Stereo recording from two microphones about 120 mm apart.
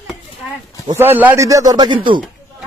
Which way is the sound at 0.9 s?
15° right (ahead or behind).